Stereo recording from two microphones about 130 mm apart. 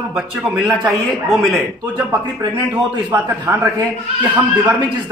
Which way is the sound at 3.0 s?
25° right (ahead or behind).